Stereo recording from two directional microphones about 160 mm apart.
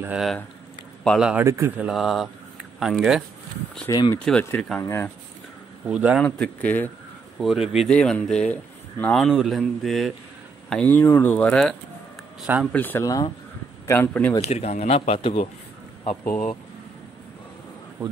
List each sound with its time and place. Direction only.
1.0 s speech: centre (ahead or behind)
1.4 s speech: 15° right (ahead or behind)
1.9 s speech: centre (ahead or behind)
3.9 s speech: 25° left (ahead or behind)
4.2 s speech: 10° left (ahead or behind)
5.9 s speech: 10° right (ahead or behind)
6.1 s speech: 5° left (ahead or behind)
7.3 s speech: centre (ahead or behind)
12.4 s speech: 10° right (ahead or behind)
12.7 s speech: 10° left (ahead or behind)
14.5 s speech: 40° left (ahead or behind)